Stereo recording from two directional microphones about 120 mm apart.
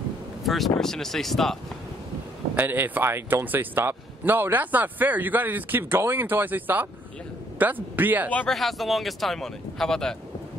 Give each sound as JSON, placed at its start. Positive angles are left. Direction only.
{"t": 0.4, "sound": "a sound", "side_deg": 0}
{"t": 0.7, "sound": "speech", "side_deg": 5}
{"t": 2.5, "sound": "speech", "side_deg": -15}
{"t": 8.3, "sound": "speech", "side_deg": 10}
{"t": 8.5, "sound": "speech", "side_deg": 0}